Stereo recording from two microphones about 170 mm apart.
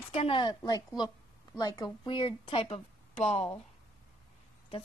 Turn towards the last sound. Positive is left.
turn(degrees=40)  # may be behind; listen again after turning